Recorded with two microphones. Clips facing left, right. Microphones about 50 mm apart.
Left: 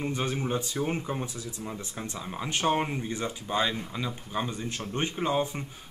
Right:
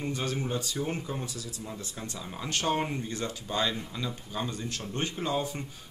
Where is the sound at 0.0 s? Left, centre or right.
Left.